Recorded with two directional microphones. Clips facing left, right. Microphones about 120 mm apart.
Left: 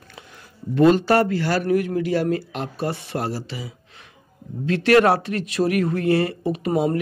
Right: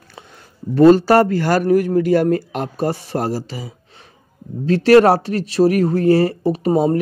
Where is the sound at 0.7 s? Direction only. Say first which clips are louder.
Right 5 dB; 35° right (ahead or behind).